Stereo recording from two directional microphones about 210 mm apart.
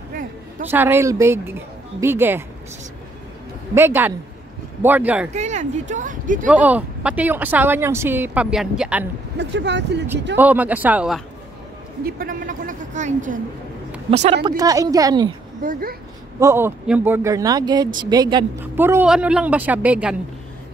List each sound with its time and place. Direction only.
0.7 s speech: 10° right (ahead or behind)
3.7 s speech: 10° right (ahead or behind)
5.3 s a woman's voice: 35° right (ahead or behind)
6.5 s speech: 5° right (ahead or behind)
9.4 s speech: 55° right (ahead or behind)
10.3 s speech: 5° right (ahead or behind)
12.0 s a woman's voice: 40° right (ahead or behind)
14.6 s speech: 15° right (ahead or behind)
15.6 s speech: 45° right (ahead or behind)
16.3 s speech: 10° right (ahead or behind)